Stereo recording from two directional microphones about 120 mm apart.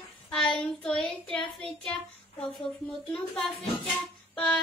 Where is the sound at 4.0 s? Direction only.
10° left (ahead or behind).